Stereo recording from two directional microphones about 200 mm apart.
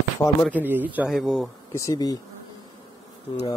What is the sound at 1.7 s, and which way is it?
Speech, 15° left (ahead or behind).